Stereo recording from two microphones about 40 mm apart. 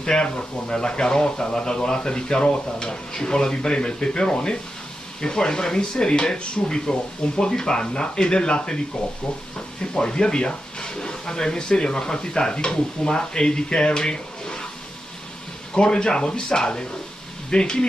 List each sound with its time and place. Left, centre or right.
0.0 s speech: left
9.9 s speech: left
15.7 s speech: left